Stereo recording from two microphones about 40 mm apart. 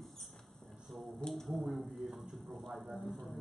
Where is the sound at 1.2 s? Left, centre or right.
Centre.